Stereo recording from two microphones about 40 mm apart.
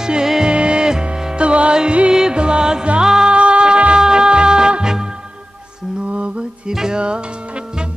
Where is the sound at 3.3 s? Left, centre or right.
Right.